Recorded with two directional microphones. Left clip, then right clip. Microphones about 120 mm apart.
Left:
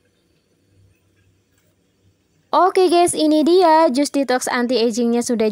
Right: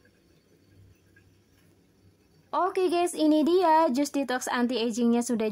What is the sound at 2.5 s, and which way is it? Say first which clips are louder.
A woman's voice: left 12 dB; 70° left (ahead or behind).